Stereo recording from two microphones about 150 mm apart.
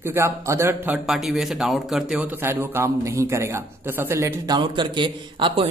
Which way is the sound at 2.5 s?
15° right (ahead or behind).